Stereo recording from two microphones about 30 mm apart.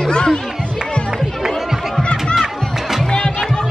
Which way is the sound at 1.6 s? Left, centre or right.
Centre.